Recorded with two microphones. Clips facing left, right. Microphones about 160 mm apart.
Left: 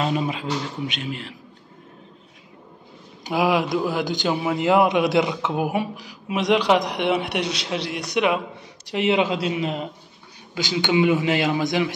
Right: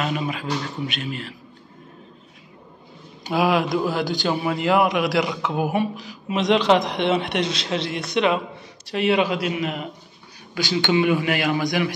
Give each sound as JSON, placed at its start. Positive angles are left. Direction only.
{"t": 0.0, "sound": "a man's voice", "side_deg": 30}
{"t": 3.3, "sound": "a man's voice", "side_deg": 15}
{"t": 10.5, "sound": "a man's voice", "side_deg": 20}